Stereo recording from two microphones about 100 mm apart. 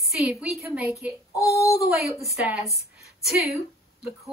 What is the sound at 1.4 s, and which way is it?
Child singing, 30° left (ahead or behind).